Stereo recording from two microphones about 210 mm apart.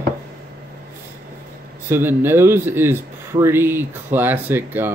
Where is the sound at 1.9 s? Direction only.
10° right (ahead or behind).